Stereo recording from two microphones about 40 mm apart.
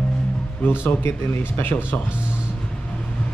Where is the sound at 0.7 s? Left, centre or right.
Left.